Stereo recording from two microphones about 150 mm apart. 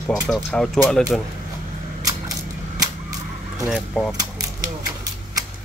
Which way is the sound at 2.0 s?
25° right (ahead or behind).